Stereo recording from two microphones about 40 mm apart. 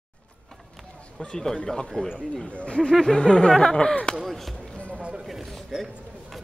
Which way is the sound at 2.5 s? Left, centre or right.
Left.